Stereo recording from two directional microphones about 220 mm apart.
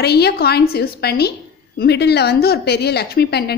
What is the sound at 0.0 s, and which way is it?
A woman's voice, 45° left (ahead or behind).